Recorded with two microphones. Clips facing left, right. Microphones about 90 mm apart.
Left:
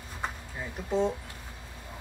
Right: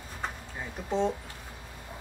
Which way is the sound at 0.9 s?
5° left (ahead or behind).